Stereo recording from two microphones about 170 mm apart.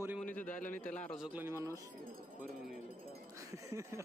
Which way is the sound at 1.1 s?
5° right (ahead or behind).